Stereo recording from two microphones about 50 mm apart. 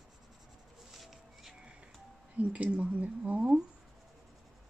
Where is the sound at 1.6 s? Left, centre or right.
Right.